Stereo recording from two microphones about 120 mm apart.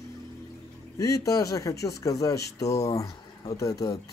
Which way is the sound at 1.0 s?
30° left (ahead or behind).